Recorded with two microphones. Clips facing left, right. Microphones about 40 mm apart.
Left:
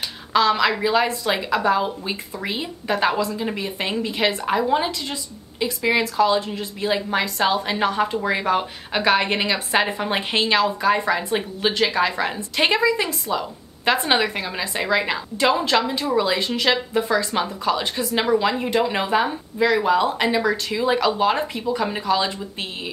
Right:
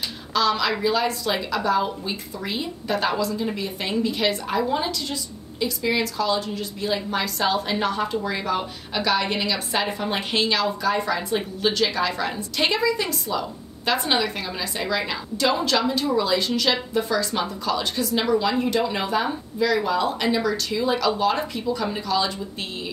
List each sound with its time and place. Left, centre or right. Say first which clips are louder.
0.3 s a woman's voice: left 4 dB; left